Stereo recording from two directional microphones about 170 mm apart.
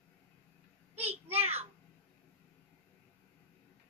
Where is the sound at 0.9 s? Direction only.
35° right (ahead or behind).